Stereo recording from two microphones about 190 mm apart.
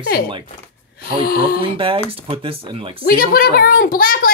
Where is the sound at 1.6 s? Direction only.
30° right (ahead or behind).